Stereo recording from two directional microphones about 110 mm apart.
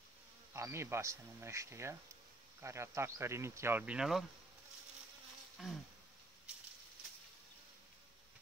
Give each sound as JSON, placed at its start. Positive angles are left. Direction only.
{"t": 0.5, "sound": "speech", "side_deg": -25}
{"t": 5.6, "sound": "insect", "side_deg": -5}